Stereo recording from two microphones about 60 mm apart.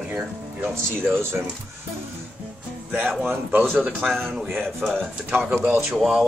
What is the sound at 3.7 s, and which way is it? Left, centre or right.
Speech, centre.